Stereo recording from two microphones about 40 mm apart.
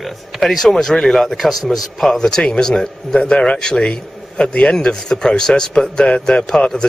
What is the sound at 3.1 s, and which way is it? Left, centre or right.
A man's voice, left.